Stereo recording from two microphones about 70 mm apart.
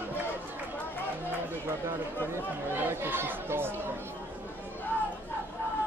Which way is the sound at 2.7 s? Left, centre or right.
Right.